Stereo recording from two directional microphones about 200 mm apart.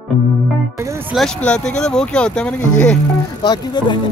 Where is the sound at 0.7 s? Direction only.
15° right (ahead or behind).